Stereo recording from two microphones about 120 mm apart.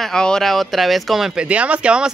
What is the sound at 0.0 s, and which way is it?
Speech, 5° left (ahead or behind).